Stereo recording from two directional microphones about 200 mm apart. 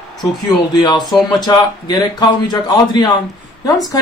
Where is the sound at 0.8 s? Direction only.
20° left (ahead or behind).